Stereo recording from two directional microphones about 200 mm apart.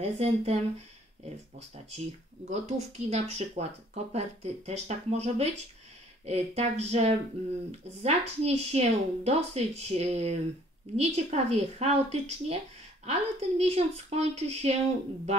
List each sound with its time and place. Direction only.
0.0 s speech: 35° right (ahead or behind)
2.5 s speech: 35° right (ahead or behind)